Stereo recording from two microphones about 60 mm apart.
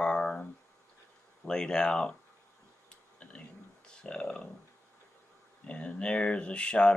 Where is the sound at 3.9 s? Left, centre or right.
Centre.